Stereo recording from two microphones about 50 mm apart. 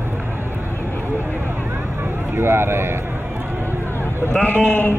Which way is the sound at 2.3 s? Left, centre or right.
Right.